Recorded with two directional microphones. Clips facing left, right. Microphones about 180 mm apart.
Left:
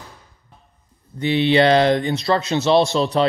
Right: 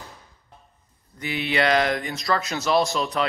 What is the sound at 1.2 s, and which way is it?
A man's voice, 30° left (ahead or behind).